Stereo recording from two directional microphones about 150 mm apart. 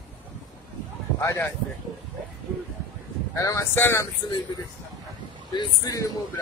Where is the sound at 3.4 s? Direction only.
20° left (ahead or behind).